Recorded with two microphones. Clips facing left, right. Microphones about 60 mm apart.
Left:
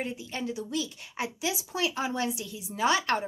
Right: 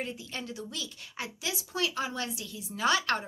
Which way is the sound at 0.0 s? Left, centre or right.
Centre.